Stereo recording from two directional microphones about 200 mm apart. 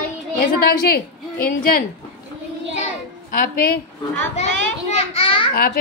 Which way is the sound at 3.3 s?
45° left (ahead or behind).